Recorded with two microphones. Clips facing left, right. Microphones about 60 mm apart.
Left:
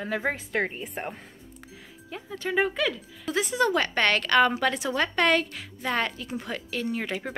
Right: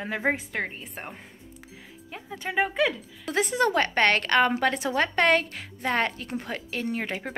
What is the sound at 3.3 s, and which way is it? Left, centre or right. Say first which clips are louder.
A woman's voice: even; right.